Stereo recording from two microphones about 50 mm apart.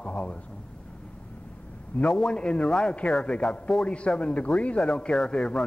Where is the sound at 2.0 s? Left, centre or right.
Centre.